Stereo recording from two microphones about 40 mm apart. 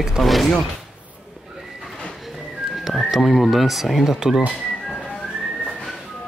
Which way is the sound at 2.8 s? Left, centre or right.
Centre.